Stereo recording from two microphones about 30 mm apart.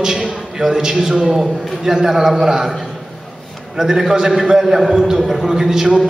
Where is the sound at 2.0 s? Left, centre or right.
Centre.